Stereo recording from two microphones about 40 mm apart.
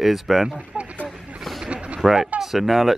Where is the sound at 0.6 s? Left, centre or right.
Right.